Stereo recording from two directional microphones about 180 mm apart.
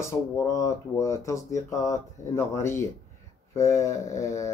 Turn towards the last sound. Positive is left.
turn(degrees=15)  # may be behind; listen again after turning